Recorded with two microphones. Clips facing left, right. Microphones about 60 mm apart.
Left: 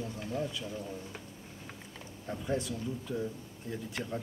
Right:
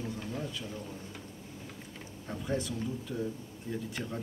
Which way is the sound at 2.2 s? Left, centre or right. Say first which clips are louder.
Even; centre.